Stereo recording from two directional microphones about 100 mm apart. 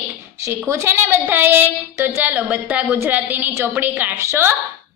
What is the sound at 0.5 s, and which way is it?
A woman's voice, 25° right (ahead or behind).